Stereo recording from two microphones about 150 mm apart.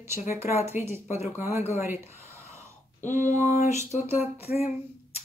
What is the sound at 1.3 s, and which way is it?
Speech, 15° right (ahead or behind).